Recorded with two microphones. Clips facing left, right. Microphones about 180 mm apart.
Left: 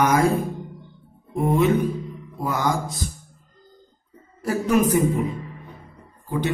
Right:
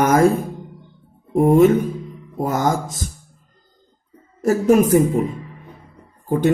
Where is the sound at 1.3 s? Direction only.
45° right (ahead or behind).